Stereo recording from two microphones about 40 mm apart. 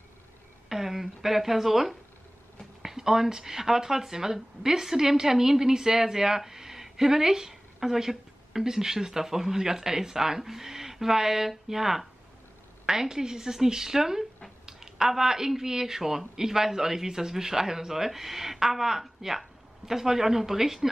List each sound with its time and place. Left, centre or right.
0.7 s speech: centre